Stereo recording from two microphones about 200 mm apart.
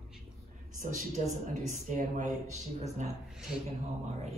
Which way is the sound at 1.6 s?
40° right (ahead or behind).